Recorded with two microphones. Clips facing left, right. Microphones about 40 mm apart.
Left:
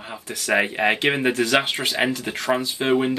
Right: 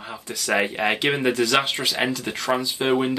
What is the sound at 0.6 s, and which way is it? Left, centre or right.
Speech, centre.